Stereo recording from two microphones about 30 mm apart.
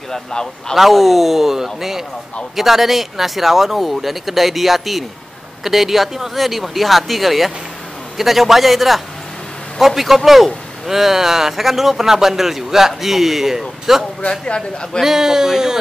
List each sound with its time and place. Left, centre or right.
0.1 s a man's voice: left
0.7 s a man's voice: centre
14.4 s a man's voice: left
15.0 s a man's voice: centre